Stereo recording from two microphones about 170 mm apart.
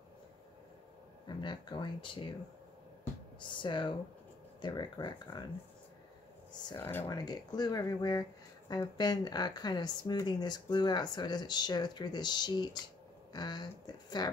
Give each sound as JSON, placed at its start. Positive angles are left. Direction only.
{"t": 1.2, "sound": "speech", "side_deg": 25}
{"t": 3.3, "sound": "speech", "side_deg": 30}
{"t": 7.1, "sound": "speech", "side_deg": 25}